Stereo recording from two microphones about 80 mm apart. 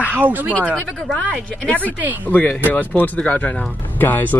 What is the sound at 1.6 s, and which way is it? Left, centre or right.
Speech, centre.